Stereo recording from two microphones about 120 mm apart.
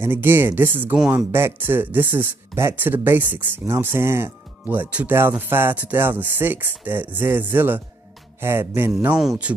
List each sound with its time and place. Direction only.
0.0 s speech: 15° right (ahead or behind)
8.4 s music: 20° right (ahead or behind)
9.2 s speech: 5° right (ahead or behind)